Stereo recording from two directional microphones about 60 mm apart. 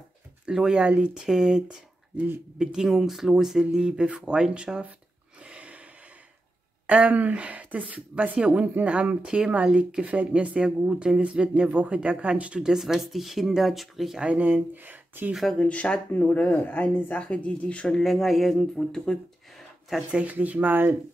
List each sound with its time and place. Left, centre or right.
0.5 s speech: centre
5.4 s a sound: right
6.9 s speech: right; by 14.2 s centre
14.2 s speech: right
15.6 s speech: centre
17.9 s speech: centre
18.6 s speech: centre
20.1 s speech: right